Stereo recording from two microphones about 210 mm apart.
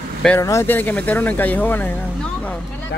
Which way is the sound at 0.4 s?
15° left (ahead or behind).